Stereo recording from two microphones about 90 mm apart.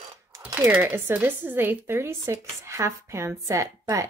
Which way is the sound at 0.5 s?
20° right (ahead or behind).